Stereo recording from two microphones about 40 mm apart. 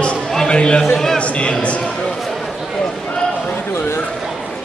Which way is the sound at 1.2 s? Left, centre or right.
Left.